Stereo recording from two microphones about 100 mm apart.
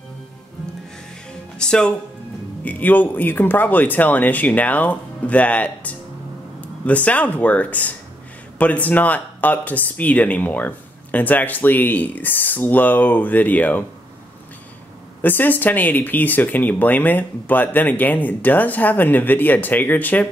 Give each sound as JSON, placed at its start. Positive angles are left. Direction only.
{"t": 1.6, "sound": "speech", "side_deg": 10}
{"t": 15.2, "sound": "speech", "side_deg": 20}